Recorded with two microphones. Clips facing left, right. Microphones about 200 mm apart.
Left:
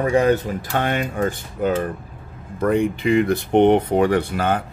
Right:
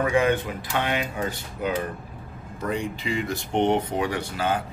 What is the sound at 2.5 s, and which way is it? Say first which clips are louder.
Speech: left 9 dB; 55° left (ahead or behind).